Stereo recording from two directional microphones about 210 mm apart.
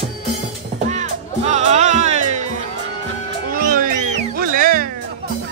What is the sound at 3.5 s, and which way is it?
Cat, 40° right (ahead or behind).